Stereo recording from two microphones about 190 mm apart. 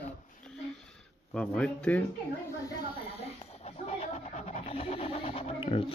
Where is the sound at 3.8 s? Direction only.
35° left (ahead or behind).